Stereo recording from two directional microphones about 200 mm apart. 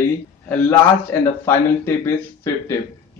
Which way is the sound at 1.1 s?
15° left (ahead or behind).